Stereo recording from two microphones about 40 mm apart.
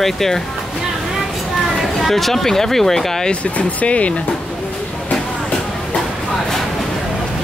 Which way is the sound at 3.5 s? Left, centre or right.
Left.